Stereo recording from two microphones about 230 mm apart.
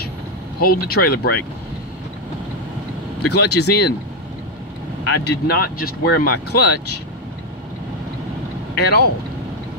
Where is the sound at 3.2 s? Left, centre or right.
Left.